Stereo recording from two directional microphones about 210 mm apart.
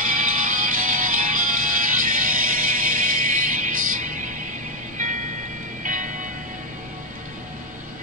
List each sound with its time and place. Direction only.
0.0 s music: 40° right (ahead or behind)